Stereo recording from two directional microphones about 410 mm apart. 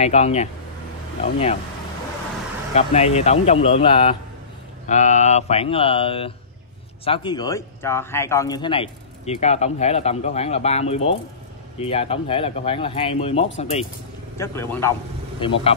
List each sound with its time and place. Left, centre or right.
0.0 s speech: centre
2.7 s speech: centre